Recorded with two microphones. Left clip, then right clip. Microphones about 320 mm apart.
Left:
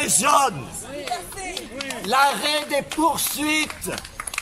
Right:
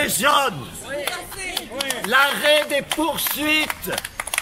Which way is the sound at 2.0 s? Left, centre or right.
Centre.